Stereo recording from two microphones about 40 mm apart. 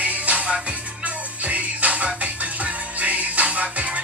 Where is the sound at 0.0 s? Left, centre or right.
Right.